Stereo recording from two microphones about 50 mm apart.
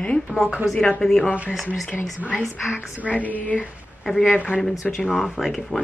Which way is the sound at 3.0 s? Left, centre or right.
Left.